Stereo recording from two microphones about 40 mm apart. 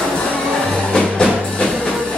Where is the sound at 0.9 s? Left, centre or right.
Left.